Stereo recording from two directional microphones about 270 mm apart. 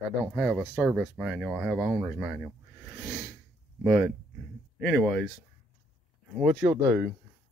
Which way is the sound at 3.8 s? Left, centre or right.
Centre.